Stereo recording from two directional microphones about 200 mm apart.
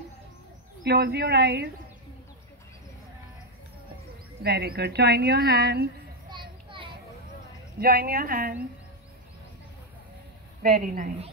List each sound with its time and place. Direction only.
0.8 s speech: 55° right (ahead or behind)
4.4 s a woman's voice: 50° right (ahead or behind)
7.8 s a woman's voice: 50° right (ahead or behind)
10.6 s a woman's voice: 45° right (ahead or behind)